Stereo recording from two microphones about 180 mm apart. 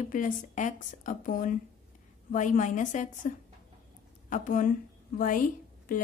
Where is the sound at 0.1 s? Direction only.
45° left (ahead or behind).